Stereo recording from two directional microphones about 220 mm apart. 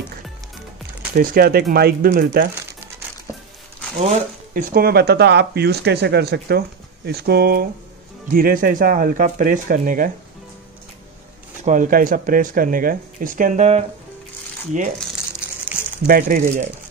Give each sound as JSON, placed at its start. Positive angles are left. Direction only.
{"t": 1.1, "sound": "speech", "side_deg": -40}
{"t": 4.0, "sound": "speech", "side_deg": -35}
{"t": 11.6, "sound": "speech", "side_deg": -35}
{"t": 16.1, "sound": "speech", "side_deg": -40}